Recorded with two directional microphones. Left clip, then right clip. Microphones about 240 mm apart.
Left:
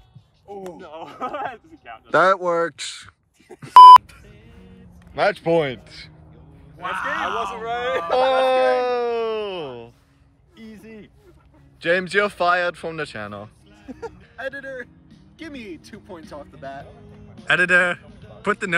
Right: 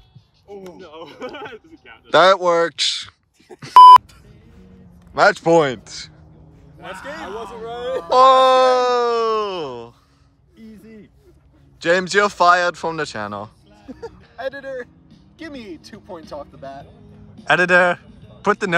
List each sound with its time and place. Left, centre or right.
1.4 s speech: centre
5.1 s speech: centre
7.4 s speech: left
8.1 s a sound: centre
10.7 s a sound: centre
11.8 s speech: centre
14.3 s speech: right
16.5 s speech: centre